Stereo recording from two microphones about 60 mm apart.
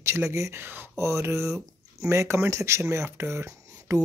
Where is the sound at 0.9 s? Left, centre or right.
Right.